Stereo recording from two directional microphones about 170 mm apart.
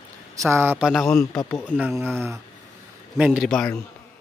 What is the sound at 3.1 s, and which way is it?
Speech, 5° right (ahead or behind).